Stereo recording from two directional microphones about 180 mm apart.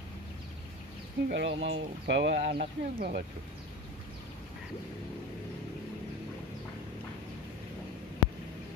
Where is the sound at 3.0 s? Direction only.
60° right (ahead or behind).